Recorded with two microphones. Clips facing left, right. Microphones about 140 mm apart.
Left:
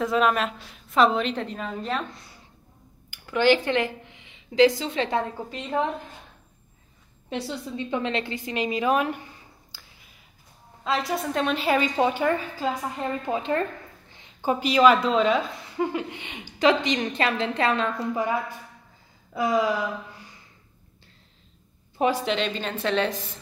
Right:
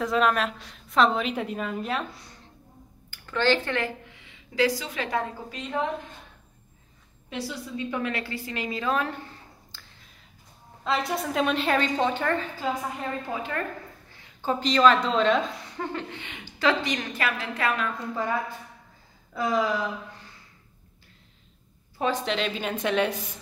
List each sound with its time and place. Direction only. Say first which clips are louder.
0.0 s a woman's voice: left 1 dB; centre (ahead or behind)
3.1 s speech: left 4 dB; 15° left (ahead or behind)
7.2 s a woman's voice: left 3 dB; 25° left (ahead or behind)
10.8 s a woman's voice: left 1 dB; centre (ahead or behind)
13.3 s a woman's voice: left 5 dB; 25° left (ahead or behind)
18.1 s a woman's voice: left 2 dB; 15° left (ahead or behind)
22.1 s a woman's voice: left 2 dB; centre (ahead or behind)